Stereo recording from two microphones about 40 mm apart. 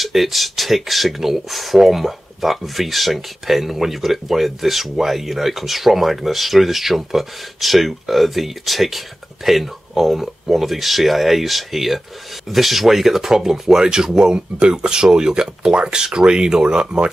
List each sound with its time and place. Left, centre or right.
0.0 s speech: centre